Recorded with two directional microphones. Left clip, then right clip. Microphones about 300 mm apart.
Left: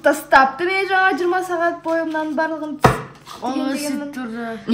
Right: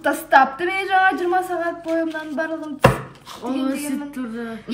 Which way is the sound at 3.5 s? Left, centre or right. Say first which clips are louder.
Left 1 dB; left.